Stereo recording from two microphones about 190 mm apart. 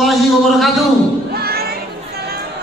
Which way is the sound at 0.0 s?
Centre (ahead or behind).